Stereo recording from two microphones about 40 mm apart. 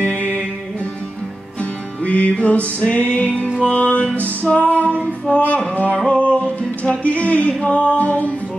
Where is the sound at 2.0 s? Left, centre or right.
Left.